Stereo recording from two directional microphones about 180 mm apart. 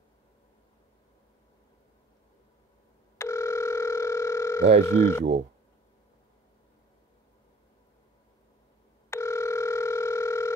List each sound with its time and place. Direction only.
3.2 s telephone: 15° left (ahead or behind)
4.8 s speech: 15° left (ahead or behind)
9.1 s telephone: 15° left (ahead or behind)